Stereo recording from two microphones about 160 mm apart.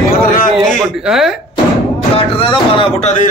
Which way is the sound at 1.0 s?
Centre (ahead or behind).